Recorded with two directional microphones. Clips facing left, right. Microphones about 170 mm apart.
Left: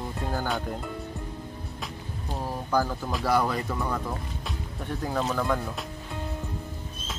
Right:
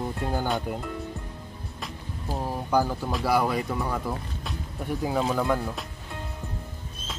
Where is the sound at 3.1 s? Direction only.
5° right (ahead or behind).